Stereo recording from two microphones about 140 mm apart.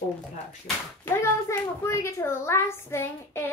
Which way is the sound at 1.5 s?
20° left (ahead or behind).